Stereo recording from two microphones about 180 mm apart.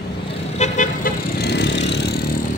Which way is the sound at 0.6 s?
50° left (ahead or behind).